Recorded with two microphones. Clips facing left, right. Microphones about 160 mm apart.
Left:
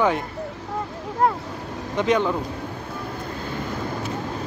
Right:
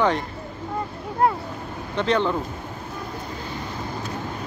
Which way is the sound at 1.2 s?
5° right (ahead or behind).